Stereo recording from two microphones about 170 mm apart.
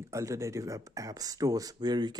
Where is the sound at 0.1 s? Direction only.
15° right (ahead or behind).